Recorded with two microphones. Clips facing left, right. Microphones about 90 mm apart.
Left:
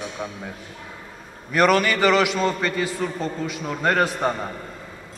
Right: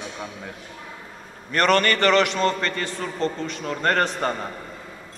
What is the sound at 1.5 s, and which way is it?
A man's voice, 5° left (ahead or behind).